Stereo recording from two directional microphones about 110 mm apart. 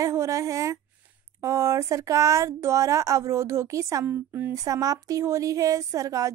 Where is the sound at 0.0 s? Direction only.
30° right (ahead or behind).